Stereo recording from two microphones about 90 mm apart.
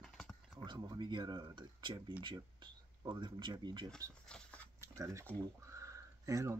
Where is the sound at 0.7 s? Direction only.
55° right (ahead or behind).